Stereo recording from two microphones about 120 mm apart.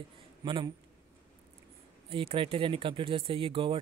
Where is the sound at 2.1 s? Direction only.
50° right (ahead or behind).